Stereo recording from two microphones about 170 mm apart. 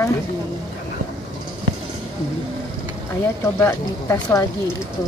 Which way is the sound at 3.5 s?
15° left (ahead or behind).